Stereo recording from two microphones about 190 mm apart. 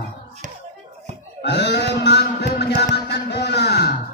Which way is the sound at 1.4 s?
60° left (ahead or behind).